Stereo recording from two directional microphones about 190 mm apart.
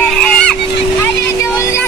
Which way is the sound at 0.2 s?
5° left (ahead or behind).